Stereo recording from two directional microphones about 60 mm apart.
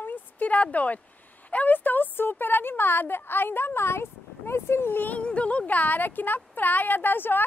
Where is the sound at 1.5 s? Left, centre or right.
Left.